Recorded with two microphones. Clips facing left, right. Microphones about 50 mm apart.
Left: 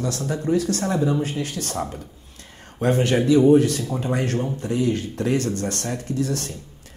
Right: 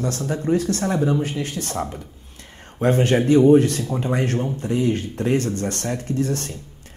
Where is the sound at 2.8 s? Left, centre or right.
Right.